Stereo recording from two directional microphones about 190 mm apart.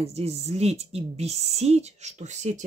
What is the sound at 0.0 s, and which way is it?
Speech, 35° right (ahead or behind).